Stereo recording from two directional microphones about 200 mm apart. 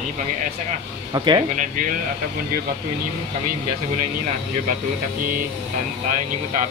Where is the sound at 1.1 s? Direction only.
20° right (ahead or behind).